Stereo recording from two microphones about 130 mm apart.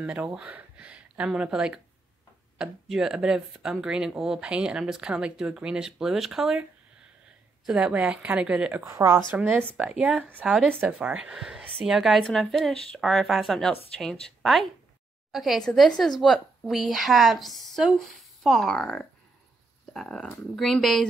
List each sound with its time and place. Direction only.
0.0 s speech: 10° right (ahead or behind)
7.6 s speech: 5° right (ahead or behind)
8.8 s speech: 25° right (ahead or behind); by 21.1 s 5° left (ahead or behind)